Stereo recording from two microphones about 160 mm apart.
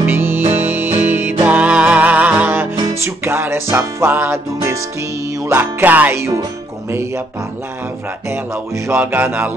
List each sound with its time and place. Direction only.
0.0 s music: 15° right (ahead or behind)
8.8 s music: 15° right (ahead or behind)